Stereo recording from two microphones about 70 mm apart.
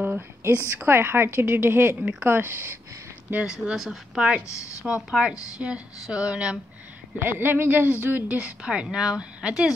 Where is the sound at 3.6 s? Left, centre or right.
Centre.